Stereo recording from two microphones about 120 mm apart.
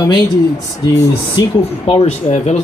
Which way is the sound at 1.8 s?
65° left (ahead or behind).